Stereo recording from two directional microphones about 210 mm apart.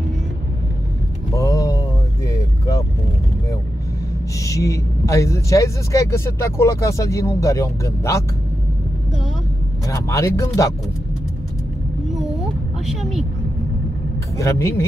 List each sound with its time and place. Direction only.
1.3 s a sound: 15° left (ahead or behind)
2.2 s vehicle: 15° left (ahead or behind)
4.4 s speech: 15° left (ahead or behind)
9.8 s speech: 15° left (ahead or behind)
14.3 s speech: 15° left (ahead or behind)